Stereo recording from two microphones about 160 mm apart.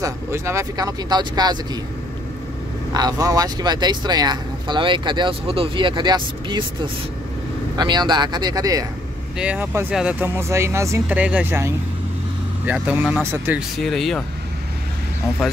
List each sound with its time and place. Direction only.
0.0 s speech: 15° right (ahead or behind)
2.9 s speech: 25° right (ahead or behind)
9.4 s speech: 10° right (ahead or behind)
13.6 s speech: centre (ahead or behind)